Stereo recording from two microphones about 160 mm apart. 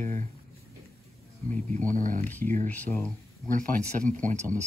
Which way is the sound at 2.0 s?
55° right (ahead or behind).